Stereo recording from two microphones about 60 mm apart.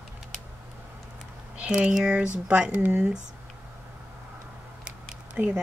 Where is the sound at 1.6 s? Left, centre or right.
Centre.